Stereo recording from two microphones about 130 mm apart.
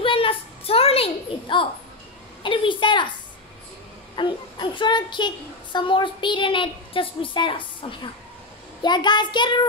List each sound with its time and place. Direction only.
0.0 s a sound: 45° left (ahead or behind)
2.4 s a woman's voice: 40° left (ahead or behind)
4.1 s a woman's voice: 35° left (ahead or behind)